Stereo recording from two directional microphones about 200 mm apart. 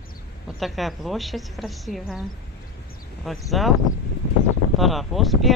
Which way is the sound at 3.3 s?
Centre (ahead or behind).